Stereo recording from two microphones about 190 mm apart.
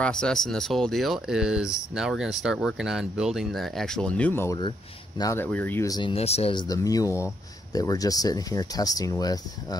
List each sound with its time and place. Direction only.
0.0 s speech: 5° left (ahead or behind)
4.6 s speech: 25° left (ahead or behind)
6.7 s speech: 20° left (ahead or behind)